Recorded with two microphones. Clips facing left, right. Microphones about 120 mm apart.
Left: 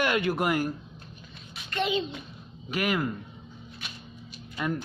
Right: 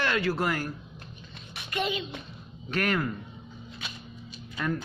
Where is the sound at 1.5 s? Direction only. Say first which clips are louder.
Right 2 dB; 65° right (ahead or behind).